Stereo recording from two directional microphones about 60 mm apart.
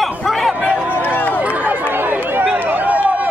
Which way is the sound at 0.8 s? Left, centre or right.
Left.